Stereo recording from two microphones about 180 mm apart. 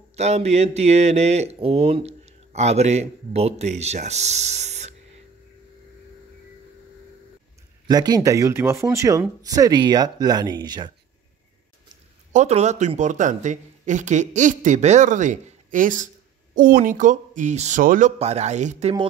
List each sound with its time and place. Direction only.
0.1 s speech: 35° right (ahead or behind)
7.9 s speech: 20° right (ahead or behind)
12.3 s speech: 40° right (ahead or behind)